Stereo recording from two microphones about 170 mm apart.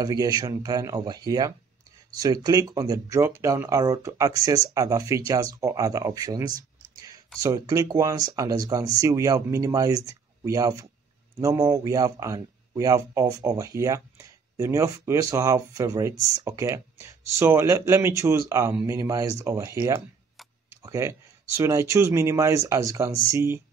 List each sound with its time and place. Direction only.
0.0 s speech: 20° right (ahead or behind)
6.5 s a sound: 20° right (ahead or behind)
7.3 s speech: 20° right (ahead or behind)